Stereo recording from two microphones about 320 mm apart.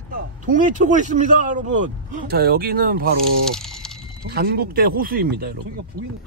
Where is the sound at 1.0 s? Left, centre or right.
Right.